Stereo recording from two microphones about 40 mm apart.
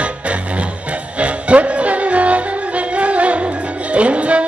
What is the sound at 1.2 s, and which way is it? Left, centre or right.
Music, right.